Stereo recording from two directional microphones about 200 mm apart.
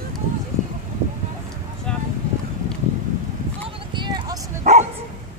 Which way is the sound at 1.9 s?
5° left (ahead or behind).